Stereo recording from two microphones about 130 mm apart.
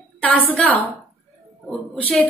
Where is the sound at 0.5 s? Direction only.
10° left (ahead or behind).